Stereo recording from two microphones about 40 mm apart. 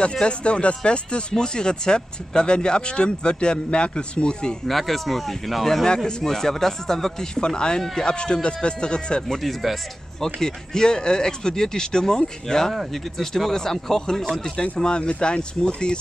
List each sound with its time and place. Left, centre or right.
0.2 s speech: left
4.6 s speech: centre
6.0 s speech: centre
9.4 s speech: centre
10.2 s speech: centre
14.6 s speech: left